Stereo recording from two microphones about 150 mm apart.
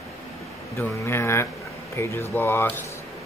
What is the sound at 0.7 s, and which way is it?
Speech, 15° left (ahead or behind).